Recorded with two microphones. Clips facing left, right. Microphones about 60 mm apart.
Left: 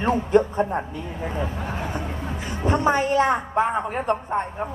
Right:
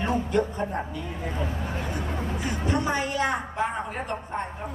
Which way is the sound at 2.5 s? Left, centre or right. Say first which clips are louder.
Left 7 dB; left.